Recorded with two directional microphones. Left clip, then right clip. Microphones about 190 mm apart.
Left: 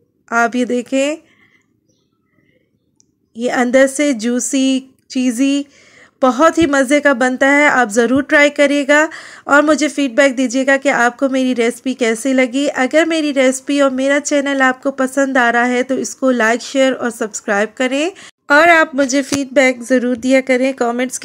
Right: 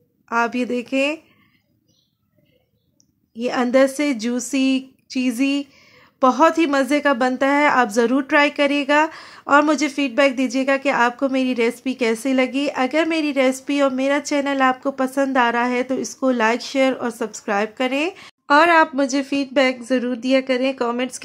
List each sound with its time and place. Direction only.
0.3 s a woman's voice: 20° left (ahead or behind)
3.3 s a woman's voice: 20° left (ahead or behind)
18.5 s a woman's voice: 10° left (ahead or behind)